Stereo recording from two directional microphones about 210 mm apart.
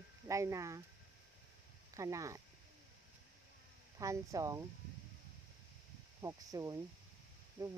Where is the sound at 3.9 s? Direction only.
15° right (ahead or behind).